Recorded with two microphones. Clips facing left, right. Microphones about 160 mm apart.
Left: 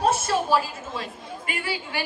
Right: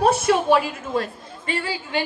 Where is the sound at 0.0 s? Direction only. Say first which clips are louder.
Right 5 dB; 65° right (ahead or behind).